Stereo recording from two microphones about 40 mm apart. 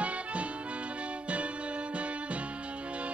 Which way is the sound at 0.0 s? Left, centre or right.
Right.